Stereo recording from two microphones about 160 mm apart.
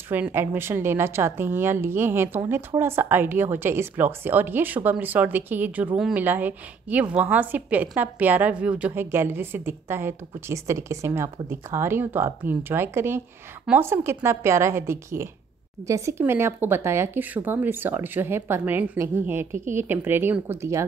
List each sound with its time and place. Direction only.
0.1 s a woman's voice: 15° right (ahead or behind)